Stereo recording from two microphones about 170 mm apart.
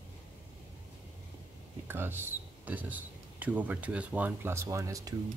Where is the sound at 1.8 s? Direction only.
15° right (ahead or behind).